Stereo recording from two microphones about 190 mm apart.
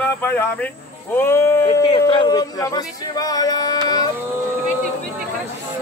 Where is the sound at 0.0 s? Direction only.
10° left (ahead or behind).